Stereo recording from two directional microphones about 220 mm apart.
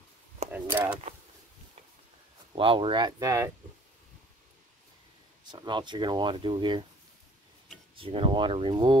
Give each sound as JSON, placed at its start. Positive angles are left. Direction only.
{"t": 0.5, "sound": "a sound", "side_deg": -5}
{"t": 2.5, "sound": "speech", "side_deg": -25}
{"t": 5.5, "sound": "speech", "side_deg": -20}
{"t": 7.9, "sound": "speech", "side_deg": -25}